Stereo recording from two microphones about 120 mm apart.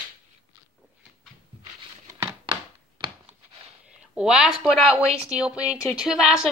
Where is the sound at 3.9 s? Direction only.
5° right (ahead or behind).